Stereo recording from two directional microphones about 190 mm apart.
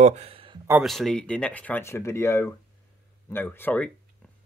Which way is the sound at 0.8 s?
Centre (ahead or behind).